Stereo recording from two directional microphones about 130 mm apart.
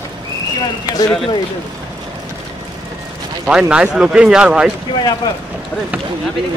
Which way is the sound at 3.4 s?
10° right (ahead or behind).